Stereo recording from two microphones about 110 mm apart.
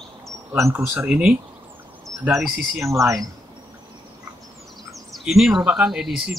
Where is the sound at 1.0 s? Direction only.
10° right (ahead or behind).